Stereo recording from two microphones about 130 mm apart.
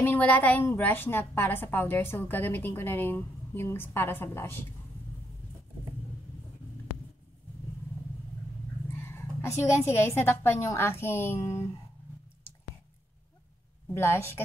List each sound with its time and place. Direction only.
0.0 s a woman's voice: 15° left (ahead or behind)
8.9 s speech: 20° left (ahead or behind)
13.9 s speech: 20° left (ahead or behind)